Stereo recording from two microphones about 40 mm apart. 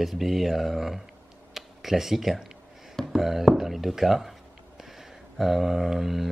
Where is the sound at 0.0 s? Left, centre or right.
Centre.